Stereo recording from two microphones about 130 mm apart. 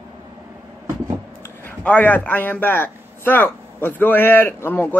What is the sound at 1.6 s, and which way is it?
Speech, 10° left (ahead or behind).